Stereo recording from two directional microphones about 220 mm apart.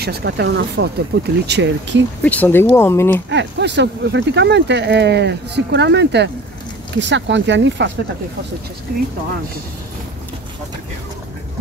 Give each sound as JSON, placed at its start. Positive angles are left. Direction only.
{"t": 0.0, "sound": "speech", "side_deg": -50}
{"t": 2.2, "sound": "speech", "side_deg": 10}
{"t": 3.3, "sound": "speech", "side_deg": -55}